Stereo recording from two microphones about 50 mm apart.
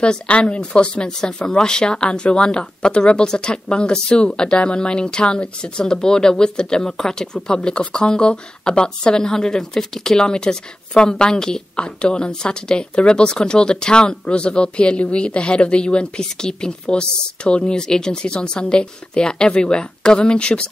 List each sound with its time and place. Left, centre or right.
0.0 s speech: left